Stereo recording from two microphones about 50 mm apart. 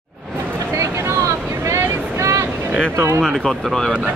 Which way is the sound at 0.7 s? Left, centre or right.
Right.